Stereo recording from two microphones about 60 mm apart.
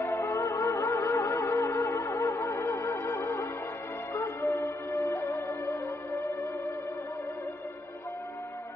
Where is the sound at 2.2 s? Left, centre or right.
Left.